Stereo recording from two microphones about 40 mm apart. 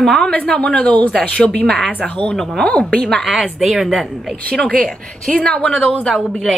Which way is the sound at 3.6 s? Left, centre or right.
Centre.